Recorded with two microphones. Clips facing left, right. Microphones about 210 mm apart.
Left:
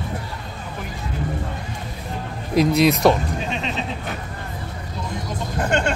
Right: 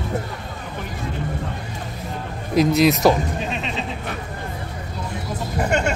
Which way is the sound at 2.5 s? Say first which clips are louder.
Even; centre (ahead or behind).